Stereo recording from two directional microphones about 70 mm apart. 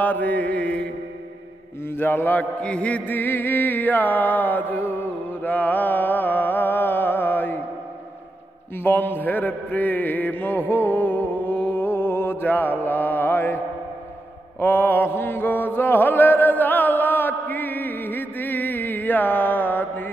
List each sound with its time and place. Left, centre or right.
0.0 s chant: left
1.9 s chant: left
4.9 s mantra: left
8.7 s chant: left
10.7 s music: left
14.6 s chant: left